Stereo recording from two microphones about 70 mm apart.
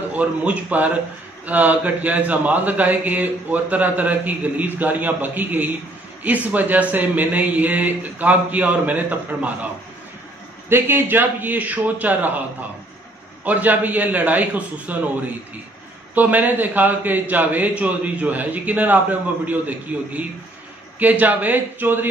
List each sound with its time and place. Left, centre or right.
0.1 s a man's voice: centre
10.7 s a man's voice: right
16.2 s a man's voice: right